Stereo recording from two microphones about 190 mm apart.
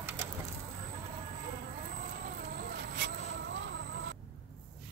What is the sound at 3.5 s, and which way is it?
Vehicle, 70° right (ahead or behind).